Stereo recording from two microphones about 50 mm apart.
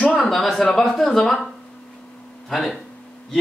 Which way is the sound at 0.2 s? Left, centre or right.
Centre.